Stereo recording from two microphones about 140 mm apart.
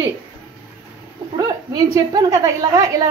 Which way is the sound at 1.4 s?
25° right (ahead or behind).